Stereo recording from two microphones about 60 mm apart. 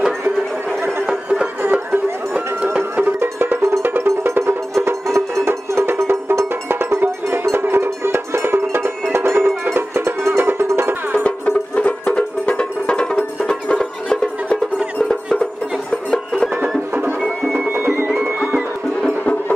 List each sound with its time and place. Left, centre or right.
1.0 s music: centre
1.6 s music: right
2.3 s music: right
3.2 s music: right
11.1 s music: left
15.9 s music: centre
16.5 s music: right